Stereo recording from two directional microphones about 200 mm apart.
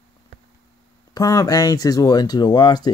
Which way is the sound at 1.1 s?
20° left (ahead or behind).